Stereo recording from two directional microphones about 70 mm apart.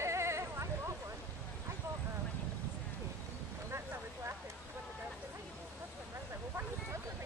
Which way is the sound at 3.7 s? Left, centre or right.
Right.